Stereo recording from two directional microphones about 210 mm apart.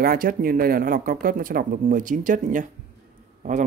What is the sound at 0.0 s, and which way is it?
Speech, 45° right (ahead or behind).